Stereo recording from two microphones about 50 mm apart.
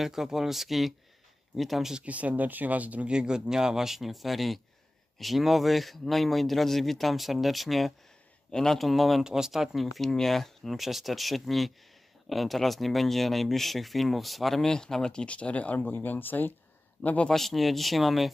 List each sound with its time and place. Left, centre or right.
0.0 s speech: centre
2.0 s speech: right
3.1 s speech: centre
8.5 s a man's voice: centre
8.7 s speech: centre
9.2 s speech: centre
9.9 s speech: centre; by 15.8 s left
15.8 s speech: left
17.3 s speech: centre